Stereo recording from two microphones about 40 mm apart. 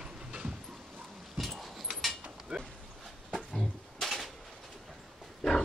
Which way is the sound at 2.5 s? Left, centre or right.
Centre.